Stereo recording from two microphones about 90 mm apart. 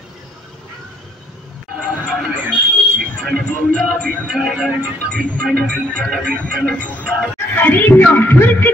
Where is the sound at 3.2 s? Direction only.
10° left (ahead or behind).